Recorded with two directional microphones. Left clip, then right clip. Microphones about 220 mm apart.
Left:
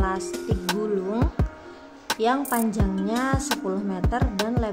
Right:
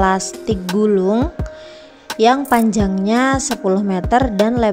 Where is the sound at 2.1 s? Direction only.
35° right (ahead or behind).